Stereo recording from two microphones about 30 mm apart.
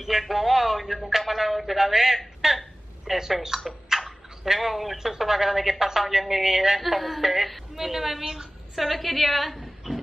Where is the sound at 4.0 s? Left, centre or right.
Centre.